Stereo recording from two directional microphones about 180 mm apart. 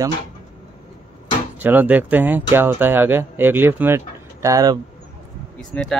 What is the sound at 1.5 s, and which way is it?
Speech, 10° right (ahead or behind).